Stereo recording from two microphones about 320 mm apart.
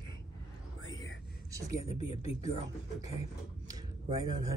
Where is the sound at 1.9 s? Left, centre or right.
Centre.